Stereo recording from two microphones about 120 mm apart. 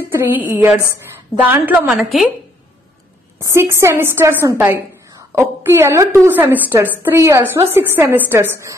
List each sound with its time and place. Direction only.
0.1 s a woman's voice: 20° right (ahead or behind)
3.3 s a woman's voice: 20° right (ahead or behind)